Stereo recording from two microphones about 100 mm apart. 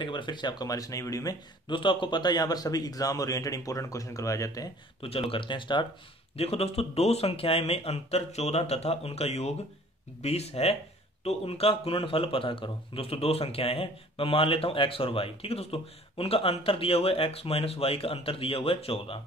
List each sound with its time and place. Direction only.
0.0 s speech: 50° left (ahead or behind); by 1.4 s 35° left (ahead or behind)
1.7 s speech: 55° left (ahead or behind); by 4.6 s 35° left (ahead or behind)
5.0 s speech: 65° left (ahead or behind)
6.3 s a man's voice: 90° left; by 19.1 s 70° left (ahead or behind)